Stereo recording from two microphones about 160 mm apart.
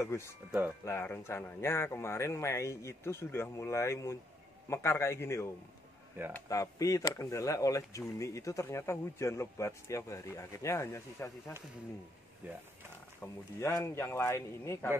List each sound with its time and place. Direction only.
0.0 s speech: 15° left (ahead or behind)
0.5 s speech: 15° right (ahead or behind)
0.8 s speech: 15° left (ahead or behind)
6.2 s speech: 15° right (ahead or behind)
6.5 s speech: 20° left (ahead or behind)
12.4 s speech: 10° right (ahead or behind)
13.2 s speech: 15° left (ahead or behind)